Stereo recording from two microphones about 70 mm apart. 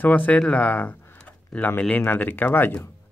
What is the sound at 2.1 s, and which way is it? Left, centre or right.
Speech, left.